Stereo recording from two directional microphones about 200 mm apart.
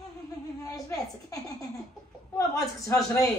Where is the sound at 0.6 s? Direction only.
15° left (ahead or behind).